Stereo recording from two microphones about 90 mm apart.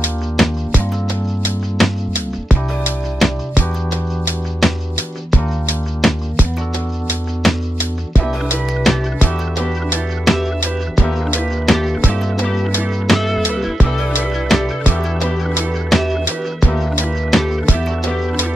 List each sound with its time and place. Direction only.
0.4 s music: centre (ahead or behind)
1.8 s music: centre (ahead or behind)
3.2 s music: centre (ahead or behind)
6.0 s music: centre (ahead or behind)
7.4 s music: centre (ahead or behind)
8.9 s music: centre (ahead or behind)
9.2 s music: 20° left (ahead or behind)
10.3 s music: centre (ahead or behind)
11.6 s music: centre (ahead or behind)
13.0 s music: centre (ahead or behind)
14.5 s music: centre (ahead or behind)
15.9 s music: centre (ahead or behind)